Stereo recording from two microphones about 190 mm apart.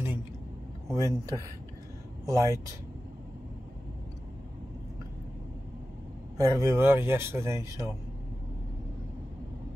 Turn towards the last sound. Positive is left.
turn(degrees=-15)  # may be behind; listen again after turning